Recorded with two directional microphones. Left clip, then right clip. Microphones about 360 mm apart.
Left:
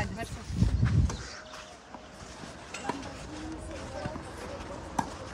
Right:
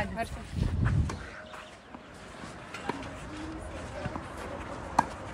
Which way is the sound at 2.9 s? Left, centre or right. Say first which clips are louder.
Even; left.